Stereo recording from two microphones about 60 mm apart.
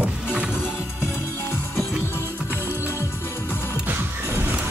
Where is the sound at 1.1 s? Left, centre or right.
Left.